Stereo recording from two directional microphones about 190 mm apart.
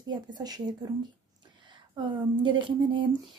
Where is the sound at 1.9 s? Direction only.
25° right (ahead or behind).